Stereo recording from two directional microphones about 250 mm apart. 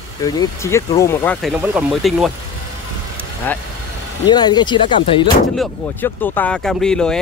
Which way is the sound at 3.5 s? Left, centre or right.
Centre.